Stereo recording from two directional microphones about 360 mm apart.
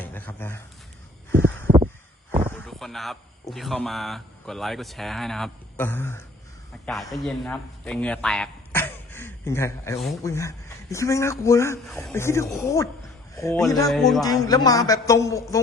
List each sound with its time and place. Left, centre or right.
0.0 s speech: centre
1.7 s crow: centre
2.5 s a man's voice: centre